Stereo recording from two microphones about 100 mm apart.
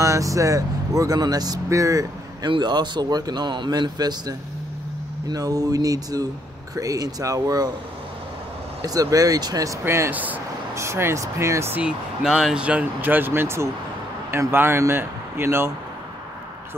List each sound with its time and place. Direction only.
0.0 s speech: 35° right (ahead or behind)
2.4 s speech: 45° right (ahead or behind)
8.8 s speech: 35° right (ahead or behind); by 10.4 s 15° right (ahead or behind)
10.7 s speech: 30° right (ahead or behind)
11.7 s speech: 10° right (ahead or behind)